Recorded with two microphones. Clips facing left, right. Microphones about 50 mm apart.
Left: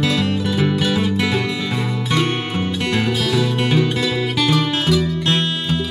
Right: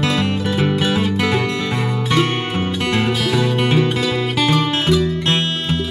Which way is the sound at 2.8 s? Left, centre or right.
Right.